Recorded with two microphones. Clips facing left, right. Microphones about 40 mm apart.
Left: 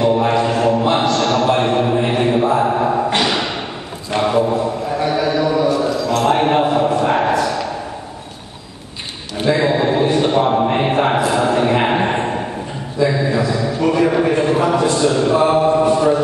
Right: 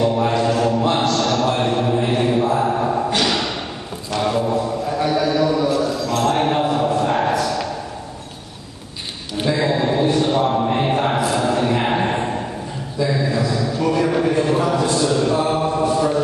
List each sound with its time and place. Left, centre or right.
0.0 s mantra: centre
3.2 s thump: centre
4.2 s mantra: centre
6.2 s a sound: left
9.5 s mantra: centre
10.7 s a sound: left
15.5 s mantra: centre